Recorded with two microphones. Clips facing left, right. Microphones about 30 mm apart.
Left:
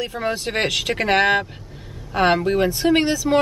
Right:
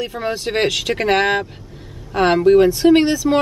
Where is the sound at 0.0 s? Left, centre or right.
Centre.